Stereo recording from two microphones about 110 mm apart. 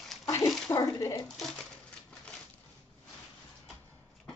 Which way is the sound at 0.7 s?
30° left (ahead or behind).